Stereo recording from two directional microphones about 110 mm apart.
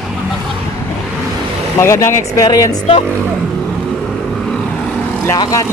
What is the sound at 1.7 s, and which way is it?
Speech, 25° left (ahead or behind).